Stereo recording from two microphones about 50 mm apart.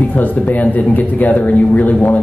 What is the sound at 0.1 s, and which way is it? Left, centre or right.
Speech, left.